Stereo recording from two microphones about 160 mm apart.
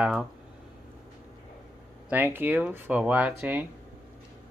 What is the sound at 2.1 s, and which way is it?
Speech, 10° right (ahead or behind).